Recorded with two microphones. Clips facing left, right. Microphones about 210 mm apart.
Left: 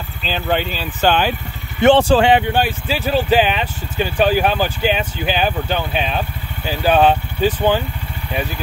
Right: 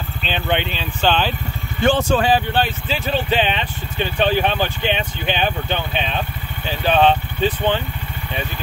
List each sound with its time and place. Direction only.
0.3 s speech: 5° left (ahead or behind)
1.8 s speech: 30° left (ahead or behind)
2.5 s speech: 10° left (ahead or behind)